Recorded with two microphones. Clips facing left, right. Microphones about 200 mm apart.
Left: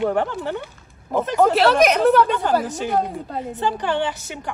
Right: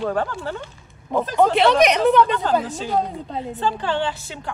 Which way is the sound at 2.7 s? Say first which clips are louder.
Left 1 dB; 15° left (ahead or behind).